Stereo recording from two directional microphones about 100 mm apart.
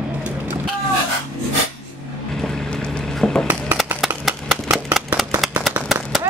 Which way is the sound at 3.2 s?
5° left (ahead or behind).